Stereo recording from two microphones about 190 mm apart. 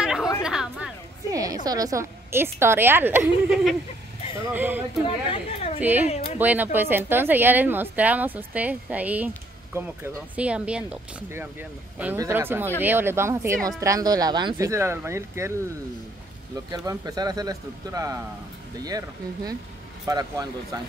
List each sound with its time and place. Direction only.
0.0 s chatter: 5° right (ahead or behind)
1.3 s speech: 20° right (ahead or behind)
5.0 s speech: 30° left (ahead or behind)
5.8 s speech: 10° right (ahead or behind)
6.0 s speech: 35° left (ahead or behind)
6.3 s speech: 10° right (ahead or behind)
16.7 s speech: 20° right (ahead or behind)